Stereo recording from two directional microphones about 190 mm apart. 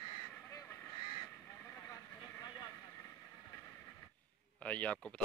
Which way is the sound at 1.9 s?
20° left (ahead or behind).